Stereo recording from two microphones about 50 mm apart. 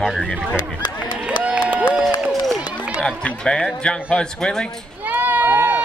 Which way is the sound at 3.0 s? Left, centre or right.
Centre.